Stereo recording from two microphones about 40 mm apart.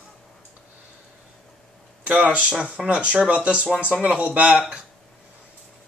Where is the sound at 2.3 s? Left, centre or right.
Right.